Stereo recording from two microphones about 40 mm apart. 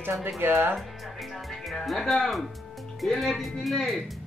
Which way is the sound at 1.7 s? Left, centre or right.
Centre.